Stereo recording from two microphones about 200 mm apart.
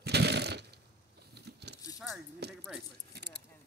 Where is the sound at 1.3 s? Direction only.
55° right (ahead or behind).